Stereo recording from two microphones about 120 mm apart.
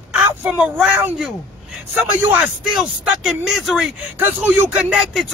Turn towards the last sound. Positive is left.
turn(degrees=0)  # may be behind; listen again after turning